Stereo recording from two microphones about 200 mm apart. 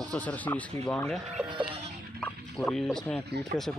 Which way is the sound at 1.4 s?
25° right (ahead or behind).